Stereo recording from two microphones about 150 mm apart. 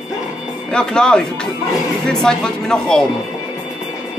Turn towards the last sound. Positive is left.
turn(degrees=5)  # may be behind; listen again after turning